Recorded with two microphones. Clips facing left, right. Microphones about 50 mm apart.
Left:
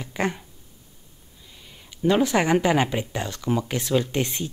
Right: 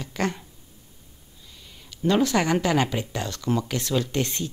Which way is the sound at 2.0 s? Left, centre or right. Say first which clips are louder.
Left 1 dB; centre.